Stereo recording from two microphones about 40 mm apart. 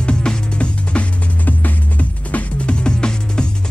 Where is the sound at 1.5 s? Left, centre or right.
Left.